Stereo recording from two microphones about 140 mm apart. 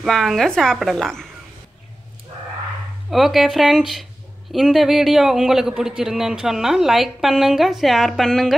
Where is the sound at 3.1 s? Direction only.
Centre (ahead or behind).